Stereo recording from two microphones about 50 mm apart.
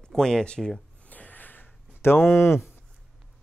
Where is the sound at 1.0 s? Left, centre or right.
Left.